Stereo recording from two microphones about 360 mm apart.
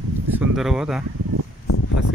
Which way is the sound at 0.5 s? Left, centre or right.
Centre.